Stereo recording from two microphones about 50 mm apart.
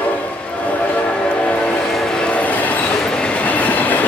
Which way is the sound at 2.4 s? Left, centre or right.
Left.